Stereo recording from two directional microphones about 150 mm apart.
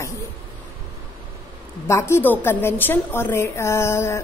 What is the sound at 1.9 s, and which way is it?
A woman's voice, 15° left (ahead or behind).